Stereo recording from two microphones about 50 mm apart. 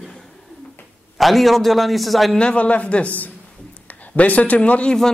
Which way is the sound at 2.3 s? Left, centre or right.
Left.